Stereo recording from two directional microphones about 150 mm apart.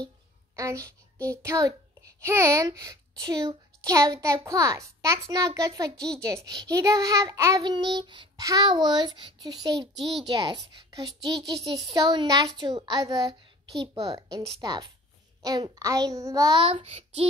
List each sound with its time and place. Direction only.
0.6 s a child's voice: 20° right (ahead or behind)
5.9 s a woman's voice: 5° left (ahead or behind)
6.2 s a child's voice: 25° right (ahead or behind)
16.6 s a woman's voice: 40° right (ahead or behind)